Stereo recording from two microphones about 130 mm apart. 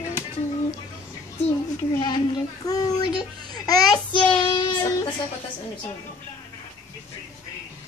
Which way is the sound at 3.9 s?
35° left (ahead or behind).